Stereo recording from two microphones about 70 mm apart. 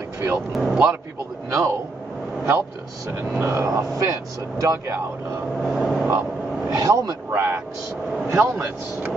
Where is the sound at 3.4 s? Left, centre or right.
Right.